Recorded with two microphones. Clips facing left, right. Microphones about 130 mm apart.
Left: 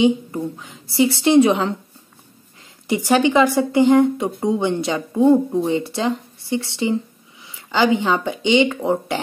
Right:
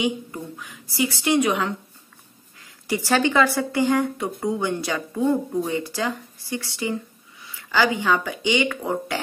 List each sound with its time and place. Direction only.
0.0 s a woman's voice: 25° left (ahead or behind)
2.9 s a woman's voice: 15° left (ahead or behind)